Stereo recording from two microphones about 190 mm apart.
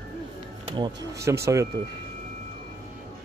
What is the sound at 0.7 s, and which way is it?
Speech, 25° right (ahead or behind).